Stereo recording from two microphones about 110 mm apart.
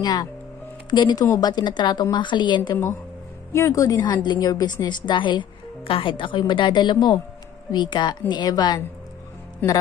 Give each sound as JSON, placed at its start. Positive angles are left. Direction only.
{"t": 0.0, "sound": "a woman's voice", "side_deg": 40}
{"t": 2.7, "sound": "a woman's voice", "side_deg": 25}
{"t": 9.6, "sound": "speech", "side_deg": 15}